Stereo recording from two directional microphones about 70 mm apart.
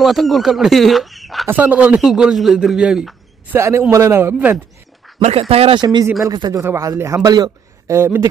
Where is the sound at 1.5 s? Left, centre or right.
Right.